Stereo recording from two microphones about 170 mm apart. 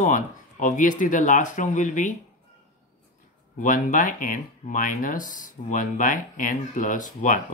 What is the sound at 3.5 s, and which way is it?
Speech, 55° left (ahead or behind).